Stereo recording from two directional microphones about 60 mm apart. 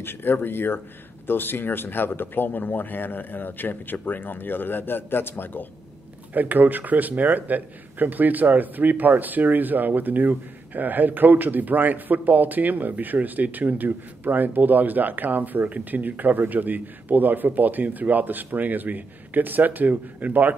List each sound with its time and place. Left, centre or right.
0.0 s speech: left
6.3 s a man's voice: right